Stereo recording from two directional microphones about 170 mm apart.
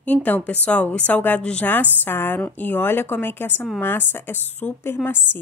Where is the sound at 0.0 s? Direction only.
10° left (ahead or behind).